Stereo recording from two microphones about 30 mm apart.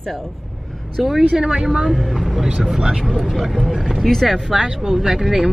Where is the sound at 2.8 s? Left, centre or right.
Right.